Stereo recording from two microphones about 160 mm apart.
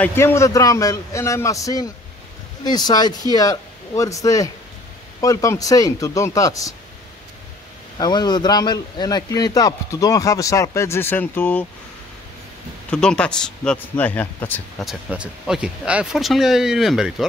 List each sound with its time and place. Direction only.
0.0 s a man's voice: 15° left (ahead or behind)
8.0 s a man's voice: 25° left (ahead or behind)
12.9 s speech: 5° left (ahead or behind)
14.8 s speech: 5° right (ahead or behind)